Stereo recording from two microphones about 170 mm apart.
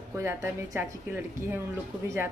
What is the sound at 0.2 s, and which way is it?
Speech, 15° right (ahead or behind).